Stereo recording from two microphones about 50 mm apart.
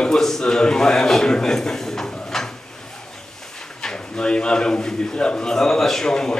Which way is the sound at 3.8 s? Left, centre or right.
Centre.